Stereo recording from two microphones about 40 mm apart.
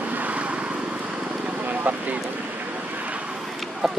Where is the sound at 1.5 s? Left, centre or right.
Right.